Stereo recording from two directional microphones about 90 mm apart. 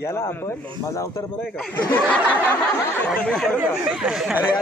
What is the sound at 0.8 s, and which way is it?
Speech, 35° left (ahead or behind).